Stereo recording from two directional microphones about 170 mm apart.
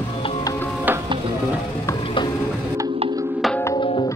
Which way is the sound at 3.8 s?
30° left (ahead or behind).